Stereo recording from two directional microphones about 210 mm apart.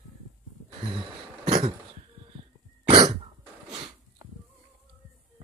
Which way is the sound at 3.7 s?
25° right (ahead or behind).